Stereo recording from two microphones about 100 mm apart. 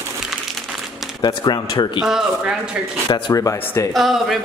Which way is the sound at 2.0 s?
5° right (ahead or behind).